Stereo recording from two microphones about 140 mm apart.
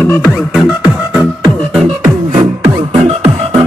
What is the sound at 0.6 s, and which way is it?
Music, centre (ahead or behind).